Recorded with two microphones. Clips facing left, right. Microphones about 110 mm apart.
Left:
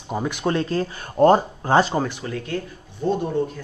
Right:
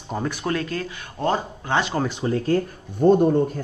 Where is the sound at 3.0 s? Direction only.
55° right (ahead or behind).